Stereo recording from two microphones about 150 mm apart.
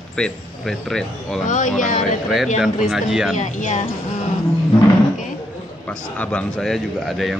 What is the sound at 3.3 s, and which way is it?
Speech, 55° left (ahead or behind).